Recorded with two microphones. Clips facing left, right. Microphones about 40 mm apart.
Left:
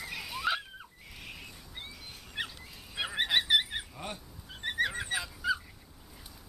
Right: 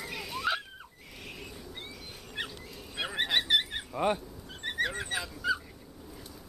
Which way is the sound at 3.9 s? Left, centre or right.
Right.